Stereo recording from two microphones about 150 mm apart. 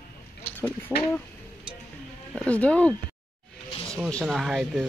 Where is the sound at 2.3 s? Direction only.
10° left (ahead or behind).